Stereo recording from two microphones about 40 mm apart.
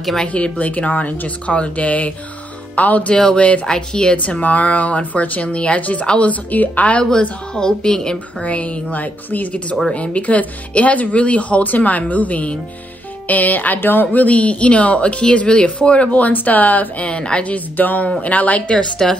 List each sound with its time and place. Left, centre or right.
0.3 s speech: left
3.6 s speech: centre
4.2 s speech: left
5.8 s speech: left
7.1 s speech: centre
8.4 s speech: left
8.9 s speech: left
9.9 s speech: left
13.7 s a woman's voice: left
14.1 s speech: left
17.0 s speech: left
17.5 s speech: left
19.0 s speech: centre